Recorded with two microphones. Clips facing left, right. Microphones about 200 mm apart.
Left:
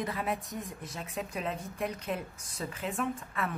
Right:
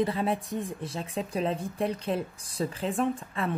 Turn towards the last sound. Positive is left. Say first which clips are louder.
# right 5 dB
turn(degrees=-30)  # may be behind; listen again after turning